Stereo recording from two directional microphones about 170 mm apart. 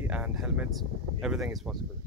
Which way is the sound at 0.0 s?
10° right (ahead or behind).